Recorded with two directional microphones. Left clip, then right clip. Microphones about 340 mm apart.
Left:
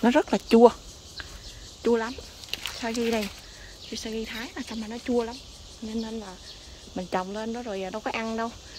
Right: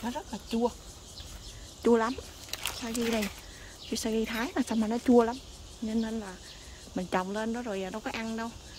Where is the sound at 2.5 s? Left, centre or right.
Centre.